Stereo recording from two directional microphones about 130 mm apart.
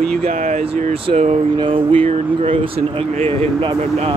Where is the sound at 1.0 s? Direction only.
55° right (ahead or behind).